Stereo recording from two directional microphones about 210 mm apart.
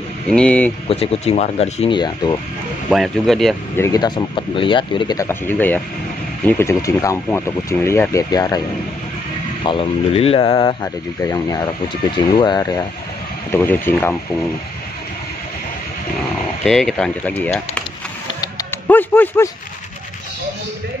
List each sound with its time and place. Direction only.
0.3 s speech: 5° left (ahead or behind)
0.8 s speech: 25° left (ahead or behind)
2.9 s speech: centre (ahead or behind)
3.8 s speech: 20° left (ahead or behind)
16.6 s speech: centre (ahead or behind)
18.4 s music: 15° left (ahead or behind)